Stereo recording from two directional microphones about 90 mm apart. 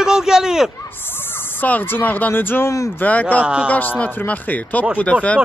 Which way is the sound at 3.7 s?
20° left (ahead or behind).